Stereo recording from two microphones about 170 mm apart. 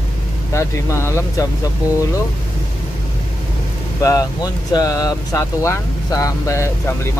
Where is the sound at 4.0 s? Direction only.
20° left (ahead or behind).